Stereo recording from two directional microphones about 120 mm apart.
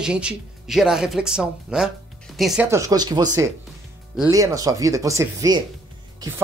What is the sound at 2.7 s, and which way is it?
Speech, 30° right (ahead or behind).